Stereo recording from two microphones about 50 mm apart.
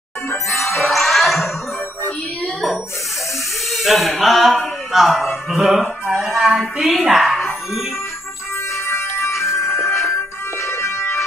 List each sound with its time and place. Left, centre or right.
0.8 s music: centre
3.7 s speech: centre
5.5 s a sound: centre
6.9 s speech: centre
8.7 s music: left